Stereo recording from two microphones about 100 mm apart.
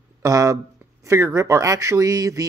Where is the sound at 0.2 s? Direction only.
35° right (ahead or behind).